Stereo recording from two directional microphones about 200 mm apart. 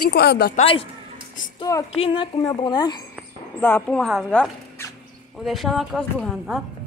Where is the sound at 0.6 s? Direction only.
25° left (ahead or behind).